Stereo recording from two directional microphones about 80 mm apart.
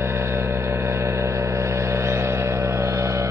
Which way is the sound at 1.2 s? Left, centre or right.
Right.